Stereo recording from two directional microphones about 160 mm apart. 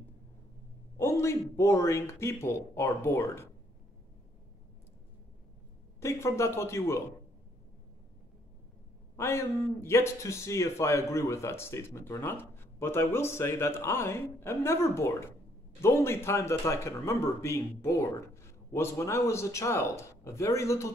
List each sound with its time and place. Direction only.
0.9 s a man's voice: 15° left (ahead or behind)
5.9 s a man's voice: 15° left (ahead or behind)
9.1 s a man's voice: 15° left (ahead or behind)